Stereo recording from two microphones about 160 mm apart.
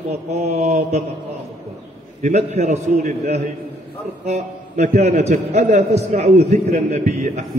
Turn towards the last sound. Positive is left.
turn(degrees=-45)  # may be behind; listen again after turning